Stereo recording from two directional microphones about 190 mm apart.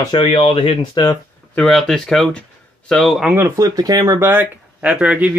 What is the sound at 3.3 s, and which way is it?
Speech, 15° right (ahead or behind).